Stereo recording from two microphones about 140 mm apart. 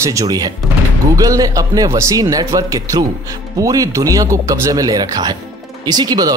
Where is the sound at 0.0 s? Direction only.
25° right (ahead or behind).